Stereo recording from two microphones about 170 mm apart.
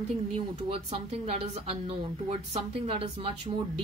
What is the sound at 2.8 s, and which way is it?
Speech, 35° right (ahead or behind).